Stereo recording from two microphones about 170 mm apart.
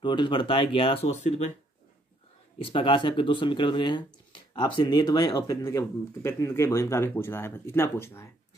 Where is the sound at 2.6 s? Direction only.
30° left (ahead or behind).